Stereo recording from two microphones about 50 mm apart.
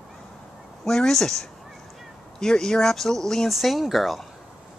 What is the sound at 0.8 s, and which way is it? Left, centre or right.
Speech, centre.